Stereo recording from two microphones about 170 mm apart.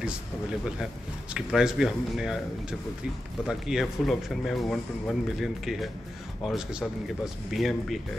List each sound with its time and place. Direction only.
1.3 s speech: 5° right (ahead or behind)
3.4 s speech: centre (ahead or behind)